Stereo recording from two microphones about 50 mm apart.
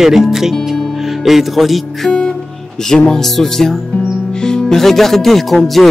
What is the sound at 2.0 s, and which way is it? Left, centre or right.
Music, centre.